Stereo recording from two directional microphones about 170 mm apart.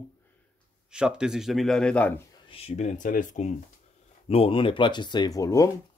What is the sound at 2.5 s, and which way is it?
Speech, 40° left (ahead or behind).